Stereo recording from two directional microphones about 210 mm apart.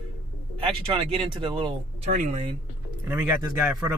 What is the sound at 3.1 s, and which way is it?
Speech, 5° right (ahead or behind).